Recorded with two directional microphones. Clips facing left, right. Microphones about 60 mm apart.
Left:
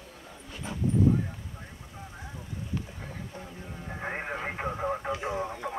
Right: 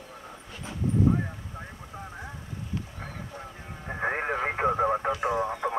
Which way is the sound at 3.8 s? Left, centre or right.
Right.